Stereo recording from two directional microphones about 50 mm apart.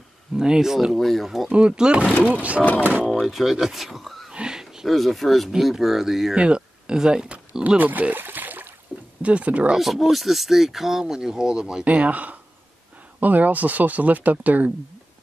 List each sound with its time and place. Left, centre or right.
0.4 s speech: centre
0.9 s speech: centre
1.5 s speech: centre
2.6 s speech: left
3.2 s speech: centre
4.3 s a sound: centre
4.8 s speech: centre
6.3 s a sound: centre
7.6 s a sound: right
9.2 s speech: right
9.8 s speech: centre
11.8 s speech: right